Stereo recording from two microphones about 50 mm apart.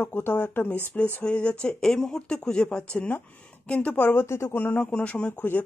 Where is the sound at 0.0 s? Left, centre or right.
Left.